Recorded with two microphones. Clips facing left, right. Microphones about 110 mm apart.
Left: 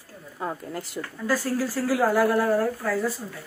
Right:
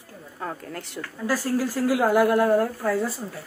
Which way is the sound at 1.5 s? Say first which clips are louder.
Right 2 dB; 15° right (ahead or behind).